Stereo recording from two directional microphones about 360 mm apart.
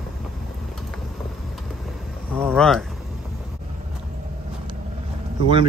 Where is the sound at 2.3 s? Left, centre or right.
Centre.